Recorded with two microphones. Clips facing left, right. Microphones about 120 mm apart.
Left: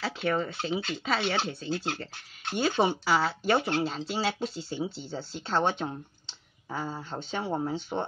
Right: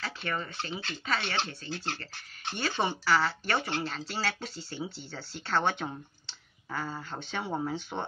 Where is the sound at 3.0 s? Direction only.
25° left (ahead or behind).